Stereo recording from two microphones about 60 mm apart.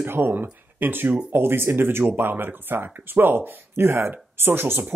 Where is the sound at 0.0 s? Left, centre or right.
Right.